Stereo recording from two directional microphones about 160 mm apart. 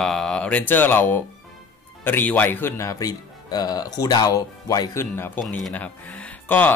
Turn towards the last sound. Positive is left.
turn(degrees=10)  # may be behind; listen again after turning